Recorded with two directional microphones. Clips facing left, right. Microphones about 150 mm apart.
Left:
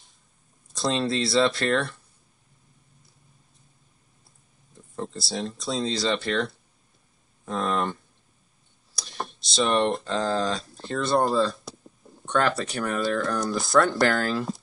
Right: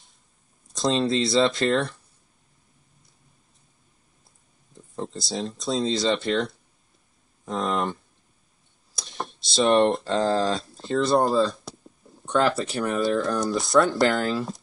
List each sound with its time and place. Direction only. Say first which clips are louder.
0.7 s speech: right 3 dB; centre (ahead or behind)
4.7 s a sound: right 1 dB; centre (ahead or behind)
5.2 s speech: right 2 dB; centre (ahead or behind)
8.9 s a sound: right 1 dB; centre (ahead or behind)
9.8 s speech: right 4 dB; centre (ahead or behind)
10.0 s speech: right 3 dB; 35° right (ahead or behind)
10.5 s speech: right 4 dB; centre (ahead or behind)